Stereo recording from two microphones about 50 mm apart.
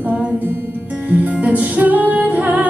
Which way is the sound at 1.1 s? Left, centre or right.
Right.